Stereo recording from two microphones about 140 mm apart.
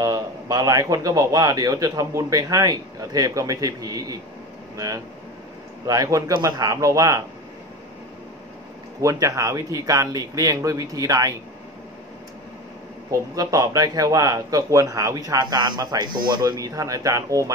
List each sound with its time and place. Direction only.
0.0 s speech: 25° right (ahead or behind)
9.0 s speech: 25° right (ahead or behind)
13.1 s speech: 25° right (ahead or behind)